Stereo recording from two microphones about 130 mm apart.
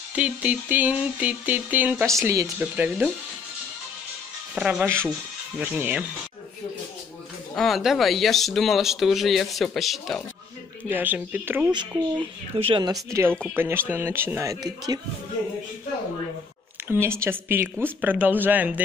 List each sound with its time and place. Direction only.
0.1 s speech: 10° right (ahead or behind)
2.2 s speech: 25° right (ahead or behind)
2.6 s speech: 10° right (ahead or behind)
4.6 s speech: 5° right (ahead or behind)
4.8 s speech: 20° right (ahead or behind)
7.5 s speech: centre (ahead or behind)
10.9 s speech: 15° right (ahead or behind)
12.5 s speech: 45° right (ahead or behind)
13.1 s speech: 20° right (ahead or behind)
16.8 s speech: 20° right (ahead or behind)